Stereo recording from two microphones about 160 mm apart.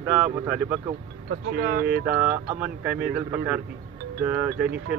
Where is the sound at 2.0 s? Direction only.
10° right (ahead or behind).